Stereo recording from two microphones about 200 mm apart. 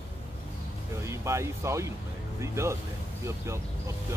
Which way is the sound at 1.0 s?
15° right (ahead or behind).